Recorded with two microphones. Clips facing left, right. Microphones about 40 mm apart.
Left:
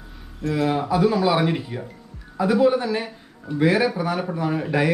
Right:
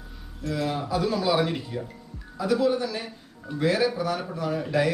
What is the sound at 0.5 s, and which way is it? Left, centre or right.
A man's voice, centre.